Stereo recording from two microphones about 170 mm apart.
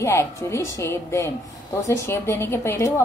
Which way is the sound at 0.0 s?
15° left (ahead or behind).